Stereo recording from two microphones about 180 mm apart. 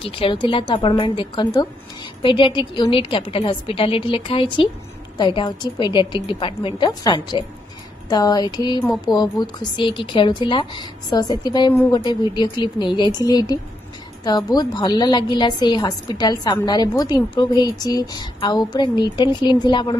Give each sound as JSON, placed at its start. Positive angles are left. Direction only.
{"t": 0.0, "sound": "speech", "side_deg": 30}